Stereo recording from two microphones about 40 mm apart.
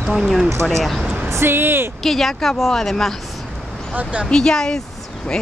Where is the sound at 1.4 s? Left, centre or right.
Right.